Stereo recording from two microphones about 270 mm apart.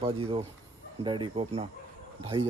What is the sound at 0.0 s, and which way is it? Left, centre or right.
Speech, right.